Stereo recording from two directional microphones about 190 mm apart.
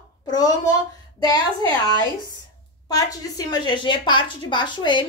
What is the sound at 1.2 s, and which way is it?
Speech, 20° left (ahead or behind).